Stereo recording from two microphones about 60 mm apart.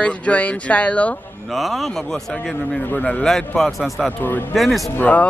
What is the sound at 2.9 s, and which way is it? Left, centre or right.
Speech, left.